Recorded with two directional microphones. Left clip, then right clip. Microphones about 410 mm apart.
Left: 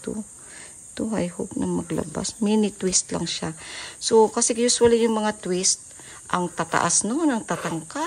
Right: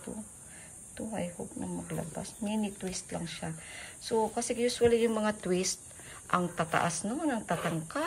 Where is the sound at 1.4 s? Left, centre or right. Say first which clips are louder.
Left 12 dB; left.